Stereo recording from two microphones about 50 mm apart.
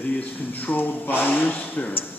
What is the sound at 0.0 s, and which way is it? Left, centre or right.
Speech, left.